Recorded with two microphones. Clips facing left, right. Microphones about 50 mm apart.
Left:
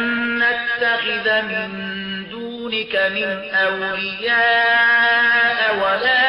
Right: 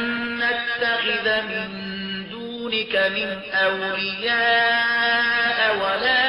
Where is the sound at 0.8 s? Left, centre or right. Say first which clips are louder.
Left 2 dB; centre.